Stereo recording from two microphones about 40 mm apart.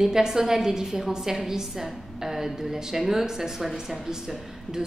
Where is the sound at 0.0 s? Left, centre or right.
Centre.